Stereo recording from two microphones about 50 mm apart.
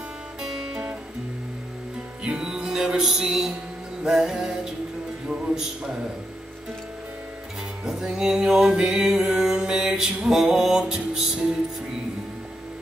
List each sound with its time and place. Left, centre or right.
0.4 s music: centre
2.2 s music: centre
7.8 s music: centre